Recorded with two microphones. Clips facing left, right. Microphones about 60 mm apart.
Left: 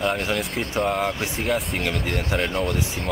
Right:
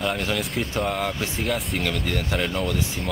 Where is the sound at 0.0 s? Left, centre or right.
Centre.